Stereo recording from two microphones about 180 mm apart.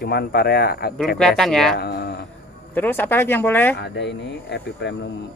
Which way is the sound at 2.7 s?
10° left (ahead or behind).